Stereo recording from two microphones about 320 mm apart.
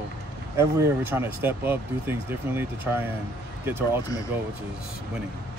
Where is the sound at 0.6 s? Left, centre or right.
Centre.